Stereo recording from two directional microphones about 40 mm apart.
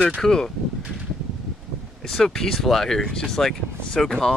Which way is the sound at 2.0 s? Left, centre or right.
Centre.